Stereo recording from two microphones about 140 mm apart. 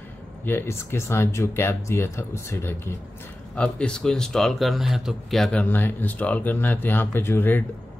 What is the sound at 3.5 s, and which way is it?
Speech, 10° left (ahead or behind).